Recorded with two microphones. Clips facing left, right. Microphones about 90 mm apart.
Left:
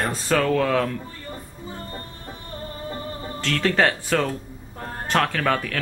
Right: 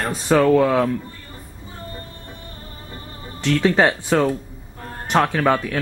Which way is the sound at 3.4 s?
20° right (ahead or behind).